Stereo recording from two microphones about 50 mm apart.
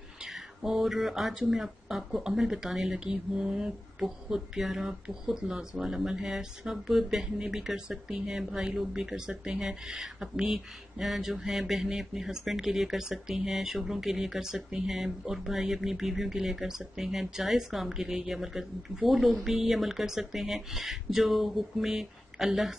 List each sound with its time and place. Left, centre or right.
0.6 s mantra: centre
1.5 s speech: centre
7.3 s speech: centre